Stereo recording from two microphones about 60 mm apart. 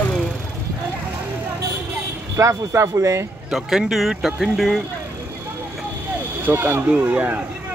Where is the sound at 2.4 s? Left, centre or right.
Right.